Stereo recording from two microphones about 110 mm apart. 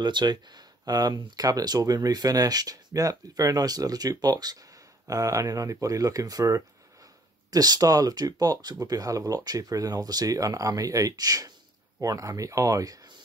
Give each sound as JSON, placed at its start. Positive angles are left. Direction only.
{"t": 0.0, "sound": "speech", "side_deg": -40}